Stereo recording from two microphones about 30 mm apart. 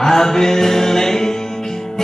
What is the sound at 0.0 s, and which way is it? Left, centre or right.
Music, centre.